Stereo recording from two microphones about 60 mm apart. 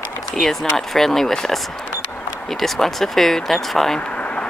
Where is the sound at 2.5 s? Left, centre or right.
Centre.